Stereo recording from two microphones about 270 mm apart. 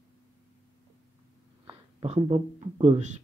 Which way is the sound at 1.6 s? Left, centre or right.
Centre.